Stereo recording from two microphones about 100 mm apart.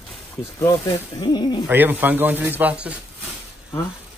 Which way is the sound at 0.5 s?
35° left (ahead or behind).